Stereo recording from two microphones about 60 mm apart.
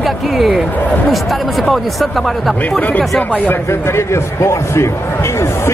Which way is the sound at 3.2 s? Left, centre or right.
Left.